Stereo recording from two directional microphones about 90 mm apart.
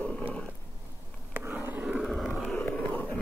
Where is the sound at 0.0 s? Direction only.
15° left (ahead or behind).